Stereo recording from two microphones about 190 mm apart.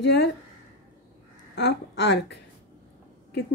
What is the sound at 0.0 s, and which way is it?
Speech, 65° left (ahead or behind).